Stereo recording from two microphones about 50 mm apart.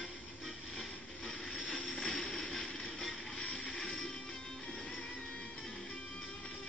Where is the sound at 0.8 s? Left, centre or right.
Centre.